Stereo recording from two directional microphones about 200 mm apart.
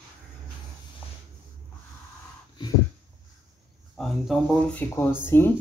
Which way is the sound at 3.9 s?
Centre (ahead or behind).